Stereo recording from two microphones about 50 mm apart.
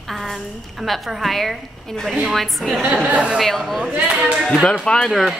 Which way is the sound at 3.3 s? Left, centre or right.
Centre.